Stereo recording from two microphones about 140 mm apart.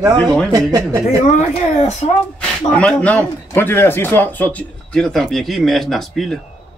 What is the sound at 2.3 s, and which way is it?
A man's voice, 5° left (ahead or behind).